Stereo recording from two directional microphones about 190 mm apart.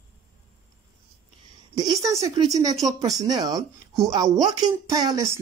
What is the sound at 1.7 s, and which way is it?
Speech, 20° right (ahead or behind).